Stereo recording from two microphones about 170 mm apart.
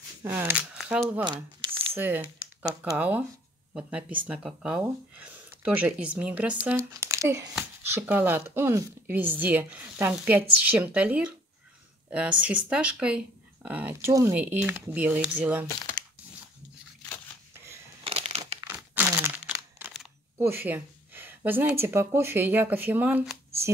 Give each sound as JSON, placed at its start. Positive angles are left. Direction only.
{"t": 0.2, "sound": "speech", "side_deg": -10}
{"t": 1.2, "sound": "a sound", "side_deg": -25}
{"t": 2.0, "sound": "speech", "side_deg": -10}
{"t": 18.0, "sound": "crumpling", "side_deg": -35}
{"t": 18.6, "sound": "crumpling", "side_deg": -15}
{"t": 20.3, "sound": "a sound", "side_deg": -10}
{"t": 21.5, "sound": "speech", "side_deg": -10}